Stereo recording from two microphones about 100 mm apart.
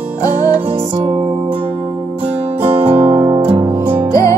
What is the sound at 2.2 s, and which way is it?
Music, 20° right (ahead or behind).